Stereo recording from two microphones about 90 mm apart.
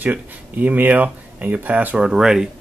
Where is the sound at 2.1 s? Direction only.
5° right (ahead or behind).